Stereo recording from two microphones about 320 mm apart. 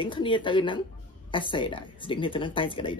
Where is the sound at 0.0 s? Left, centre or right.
Centre.